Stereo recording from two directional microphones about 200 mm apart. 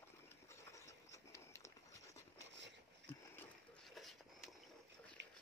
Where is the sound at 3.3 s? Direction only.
5° left (ahead or behind).